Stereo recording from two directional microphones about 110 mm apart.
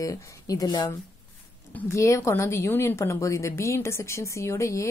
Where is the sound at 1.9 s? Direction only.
25° left (ahead or behind).